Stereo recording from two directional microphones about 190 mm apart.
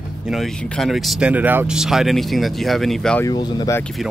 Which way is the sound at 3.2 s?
20° left (ahead or behind).